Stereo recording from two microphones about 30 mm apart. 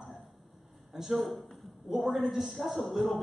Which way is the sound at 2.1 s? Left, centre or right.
Centre.